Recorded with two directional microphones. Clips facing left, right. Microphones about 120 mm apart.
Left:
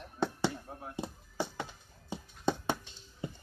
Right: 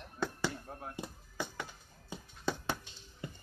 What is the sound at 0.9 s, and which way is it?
Chop, 25° left (ahead or behind).